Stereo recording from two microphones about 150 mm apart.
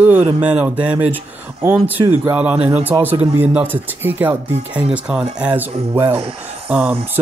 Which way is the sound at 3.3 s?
15° right (ahead or behind).